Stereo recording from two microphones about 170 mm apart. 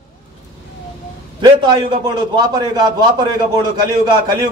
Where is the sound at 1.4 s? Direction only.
25° right (ahead or behind).